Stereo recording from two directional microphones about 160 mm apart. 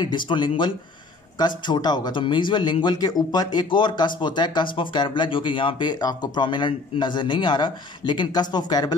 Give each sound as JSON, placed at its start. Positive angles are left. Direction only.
{"t": 0.0, "sound": "speech", "side_deg": 30}